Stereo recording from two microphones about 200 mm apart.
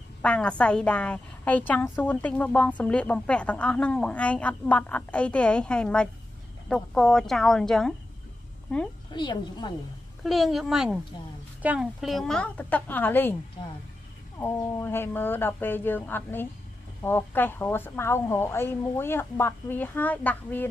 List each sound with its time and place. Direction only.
0.2 s a woman's voice: 5° left (ahead or behind)
9.1 s a woman's voice: 20° left (ahead or behind)
10.2 s a woman's voice: centre (ahead or behind)
14.4 s a woman's voice: 10° left (ahead or behind)